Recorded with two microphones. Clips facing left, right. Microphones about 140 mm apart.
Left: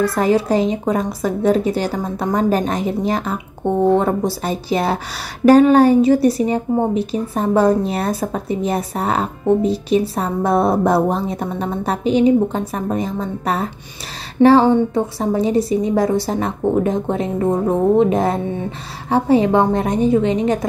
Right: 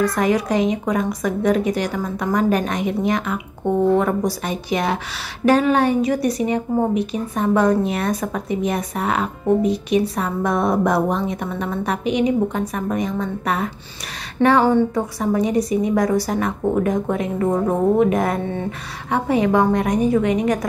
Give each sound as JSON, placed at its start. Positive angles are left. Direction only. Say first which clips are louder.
{"t": 0.0, "sound": "a woman's voice", "louder": "left 2 dB", "side_deg": 30}